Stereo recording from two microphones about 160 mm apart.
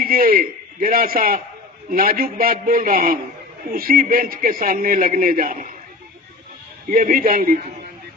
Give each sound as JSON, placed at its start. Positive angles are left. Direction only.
{"t": 0.0, "sound": "a man's voice", "side_deg": -65}
{"t": 6.9, "sound": "a man's voice", "side_deg": -60}